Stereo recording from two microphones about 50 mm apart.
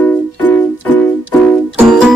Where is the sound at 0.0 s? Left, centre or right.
Left.